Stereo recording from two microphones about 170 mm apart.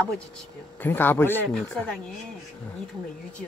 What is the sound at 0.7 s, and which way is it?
Speech, 10° left (ahead or behind).